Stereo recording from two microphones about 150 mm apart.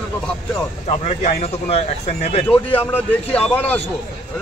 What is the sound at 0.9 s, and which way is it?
Speech, 45° left (ahead or behind).